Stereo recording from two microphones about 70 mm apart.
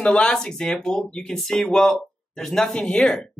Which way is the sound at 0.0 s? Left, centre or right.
Centre.